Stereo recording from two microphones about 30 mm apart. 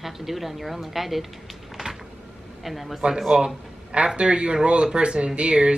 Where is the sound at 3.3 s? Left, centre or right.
Right.